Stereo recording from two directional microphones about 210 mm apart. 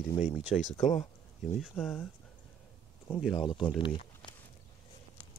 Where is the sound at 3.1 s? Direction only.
Centre (ahead or behind).